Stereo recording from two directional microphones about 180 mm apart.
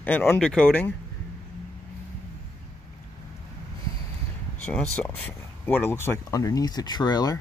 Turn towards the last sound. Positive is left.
turn(degrees=20)  # may be behind; listen again after turning